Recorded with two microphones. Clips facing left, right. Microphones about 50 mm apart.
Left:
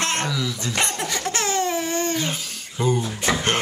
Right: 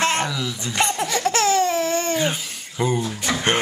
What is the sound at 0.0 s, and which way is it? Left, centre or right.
Laughter, centre.